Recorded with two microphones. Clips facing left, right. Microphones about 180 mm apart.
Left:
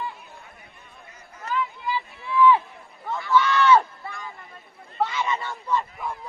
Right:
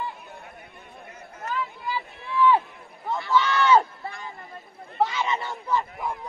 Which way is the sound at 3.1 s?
20° right (ahead or behind).